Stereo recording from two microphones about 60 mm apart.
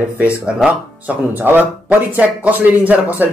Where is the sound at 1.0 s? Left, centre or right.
Right.